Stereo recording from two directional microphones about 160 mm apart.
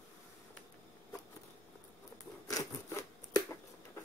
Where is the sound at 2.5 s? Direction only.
20° left (ahead or behind).